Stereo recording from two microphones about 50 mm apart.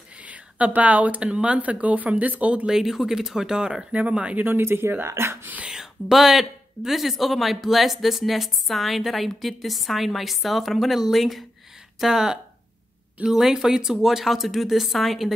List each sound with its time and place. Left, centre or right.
0.2 s speech: right
2.6 s speech: centre
4.1 s speech: right
4.5 s speech: right
5.7 s speech: centre
12.0 s speech: centre